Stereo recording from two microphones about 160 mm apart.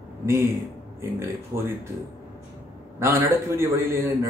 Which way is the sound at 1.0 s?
15° right (ahead or behind).